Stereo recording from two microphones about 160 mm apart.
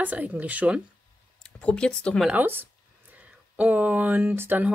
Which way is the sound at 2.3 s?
10° right (ahead or behind).